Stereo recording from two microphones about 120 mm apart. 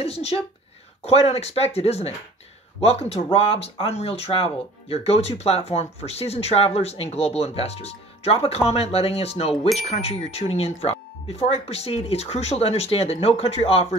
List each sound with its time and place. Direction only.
0.0 s speech: 60° left (ahead or behind)